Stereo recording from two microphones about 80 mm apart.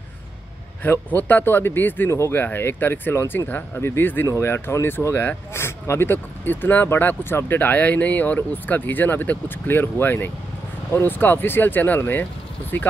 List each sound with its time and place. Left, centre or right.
0.8 s speech: left